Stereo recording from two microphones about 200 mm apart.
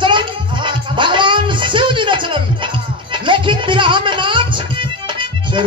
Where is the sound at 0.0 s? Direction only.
25° right (ahead or behind).